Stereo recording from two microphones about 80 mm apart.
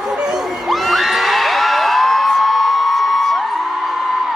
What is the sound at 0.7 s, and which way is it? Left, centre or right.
Children shouting, centre.